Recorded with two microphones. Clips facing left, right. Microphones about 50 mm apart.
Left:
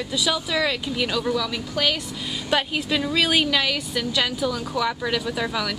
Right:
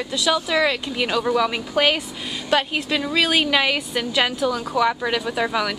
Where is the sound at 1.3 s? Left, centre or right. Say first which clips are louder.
Right 5 dB; right.